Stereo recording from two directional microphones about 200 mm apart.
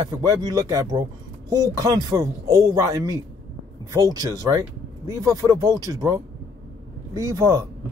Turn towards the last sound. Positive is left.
turn(degrees=-15)  # may be behind; listen again after turning